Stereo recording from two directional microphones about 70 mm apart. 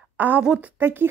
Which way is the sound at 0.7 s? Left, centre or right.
Right.